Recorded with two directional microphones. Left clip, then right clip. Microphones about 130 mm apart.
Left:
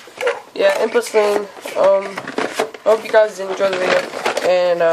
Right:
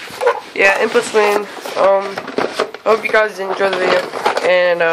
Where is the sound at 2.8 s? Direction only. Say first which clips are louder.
Even; 10° right (ahead or behind).